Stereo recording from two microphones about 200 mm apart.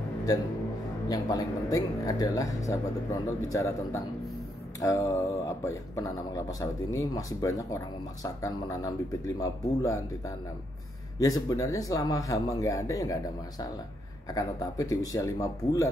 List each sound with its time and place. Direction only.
1.0 s speech: 20° left (ahead or behind)